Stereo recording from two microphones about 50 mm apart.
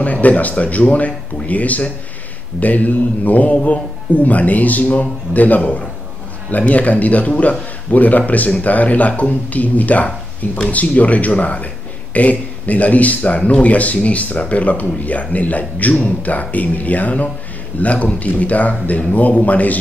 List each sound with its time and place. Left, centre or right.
0.0 s a man's voice: left